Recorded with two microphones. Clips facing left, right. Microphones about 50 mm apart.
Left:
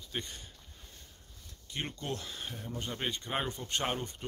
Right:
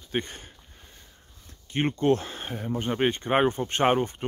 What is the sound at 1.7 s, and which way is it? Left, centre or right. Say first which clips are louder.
Speech: right 15 dB; right.